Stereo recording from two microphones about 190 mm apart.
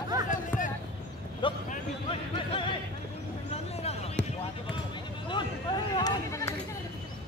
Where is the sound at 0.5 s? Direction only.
10° left (ahead or behind).